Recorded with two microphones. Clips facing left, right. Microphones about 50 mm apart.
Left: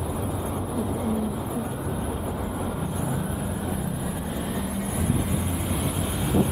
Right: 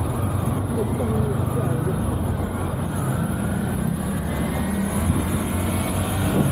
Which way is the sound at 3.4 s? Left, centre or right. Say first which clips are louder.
Right 4 dB; right.